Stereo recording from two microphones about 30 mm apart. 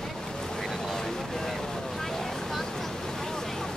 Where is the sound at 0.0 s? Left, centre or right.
Centre.